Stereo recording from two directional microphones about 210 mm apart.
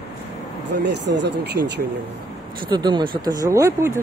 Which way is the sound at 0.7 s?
55° right (ahead or behind).